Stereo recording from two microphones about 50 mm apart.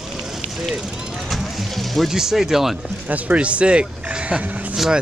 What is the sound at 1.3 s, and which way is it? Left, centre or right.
Vehicle, centre.